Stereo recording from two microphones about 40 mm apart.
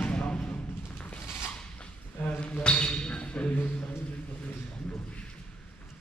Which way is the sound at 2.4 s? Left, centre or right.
Left.